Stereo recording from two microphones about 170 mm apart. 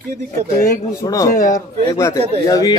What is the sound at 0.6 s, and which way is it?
Speech, 20° left (ahead or behind).